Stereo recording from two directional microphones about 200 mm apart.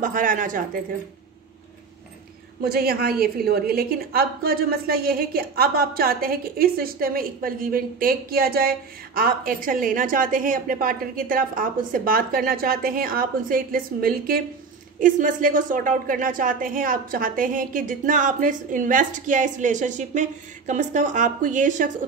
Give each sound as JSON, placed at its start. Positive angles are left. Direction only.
{"t": 0.0, "sound": "speech", "side_deg": -40}
{"t": 2.6, "sound": "a woman's voice", "side_deg": -50}